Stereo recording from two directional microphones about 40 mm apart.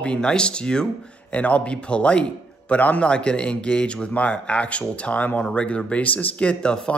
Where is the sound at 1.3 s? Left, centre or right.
Left.